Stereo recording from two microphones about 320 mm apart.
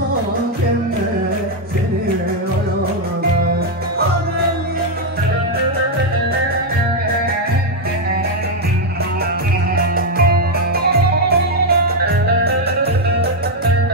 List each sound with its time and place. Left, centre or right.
10.8 s music: right